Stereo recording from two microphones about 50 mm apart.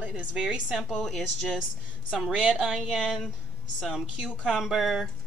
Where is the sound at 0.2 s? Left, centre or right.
Centre.